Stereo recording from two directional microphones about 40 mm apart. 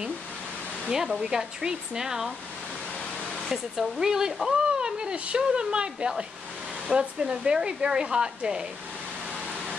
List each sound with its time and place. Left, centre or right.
0.8 s speech: centre
3.4 s speech: centre
4.0 s speech: centre
4.5 s a sound: right
5.1 s speech: right